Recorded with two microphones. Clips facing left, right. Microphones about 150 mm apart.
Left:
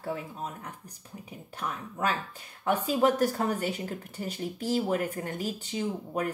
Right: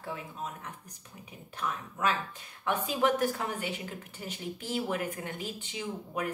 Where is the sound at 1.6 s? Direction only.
40° left (ahead or behind).